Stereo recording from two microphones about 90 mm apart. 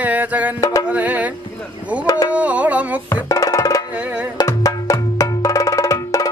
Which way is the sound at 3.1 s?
35° left (ahead or behind).